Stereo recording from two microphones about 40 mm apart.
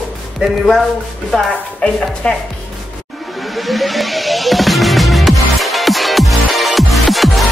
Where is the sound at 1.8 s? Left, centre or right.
Left.